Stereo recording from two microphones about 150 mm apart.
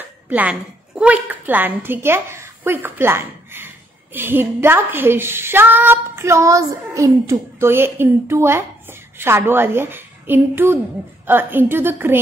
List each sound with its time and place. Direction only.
0.3 s a child's voice: 10° right (ahead or behind)